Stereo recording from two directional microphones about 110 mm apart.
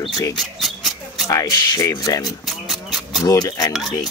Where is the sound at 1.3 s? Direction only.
35° left (ahead or behind).